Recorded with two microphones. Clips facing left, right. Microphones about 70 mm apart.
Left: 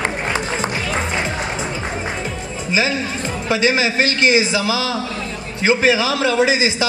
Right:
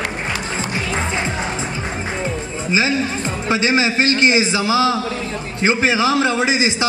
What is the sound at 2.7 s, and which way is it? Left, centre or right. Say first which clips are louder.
A man's voice: right 1 dB; right.